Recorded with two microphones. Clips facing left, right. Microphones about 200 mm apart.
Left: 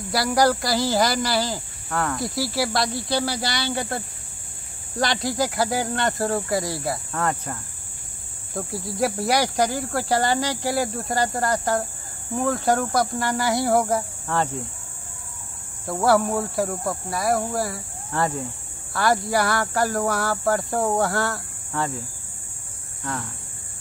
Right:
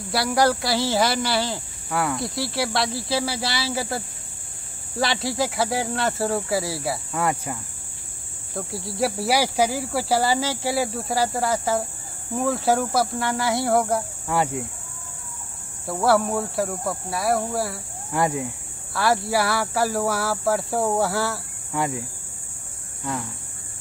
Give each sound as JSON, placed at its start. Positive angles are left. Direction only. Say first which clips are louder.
{"t": 0.1, "sound": "speech", "louder": "left 1 dB", "side_deg": 0}
{"t": 8.5, "sound": "speech", "louder": "left 1 dB", "side_deg": 0}
{"t": 14.3, "sound": "speech", "louder": "right 1 dB", "side_deg": -10}
{"t": 15.9, "sound": "speech", "louder": "left 1 dB", "side_deg": 0}
{"t": 18.1, "sound": "speech", "louder": "right 2 dB", "side_deg": -10}